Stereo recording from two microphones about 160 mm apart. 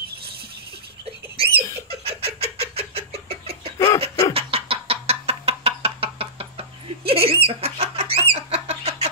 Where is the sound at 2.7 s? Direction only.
40° right (ahead or behind).